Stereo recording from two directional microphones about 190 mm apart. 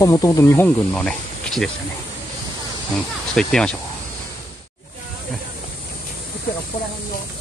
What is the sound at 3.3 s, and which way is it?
Speech, 5° left (ahead or behind).